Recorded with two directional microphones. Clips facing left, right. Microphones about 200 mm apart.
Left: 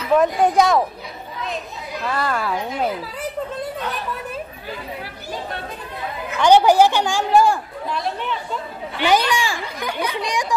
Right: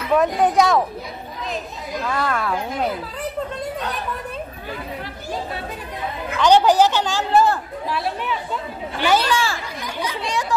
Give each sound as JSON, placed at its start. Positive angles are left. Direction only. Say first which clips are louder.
{"t": 0.1, "sound": "a woman's voice", "louder": "left 1 dB", "side_deg": 0}
{"t": 2.0, "sound": "a woman's voice", "louder": "even", "side_deg": 5}
{"t": 6.3, "sound": "a woman's voice", "louder": "left 1 dB", "side_deg": 10}
{"t": 7.9, "sound": "a woman's voice", "louder": "even", "side_deg": -5}
{"t": 9.0, "sound": "a woman's voice", "louder": "left 1 dB", "side_deg": 15}
{"t": 9.8, "sound": "speech", "louder": "left 3 dB", "side_deg": 60}
{"t": 10.1, "sound": "a woman's voice", "louder": "left 1 dB", "side_deg": 15}